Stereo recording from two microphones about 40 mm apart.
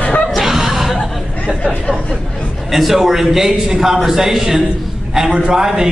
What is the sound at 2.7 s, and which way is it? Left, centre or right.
A man's voice, centre.